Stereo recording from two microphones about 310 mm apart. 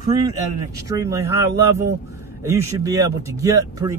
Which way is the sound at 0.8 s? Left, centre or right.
Centre.